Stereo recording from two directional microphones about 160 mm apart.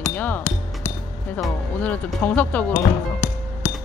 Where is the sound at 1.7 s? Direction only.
10° left (ahead or behind).